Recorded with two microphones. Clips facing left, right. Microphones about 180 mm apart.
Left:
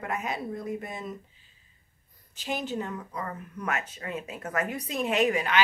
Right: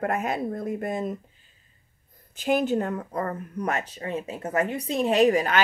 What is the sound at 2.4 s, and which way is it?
Speech, 55° right (ahead or behind).